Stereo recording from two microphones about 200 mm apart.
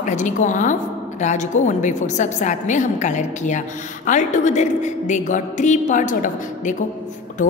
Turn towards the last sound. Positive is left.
turn(degrees=40)  # may be behind; listen again after turning